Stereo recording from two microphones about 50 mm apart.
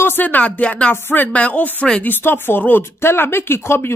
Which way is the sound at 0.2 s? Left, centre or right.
Left.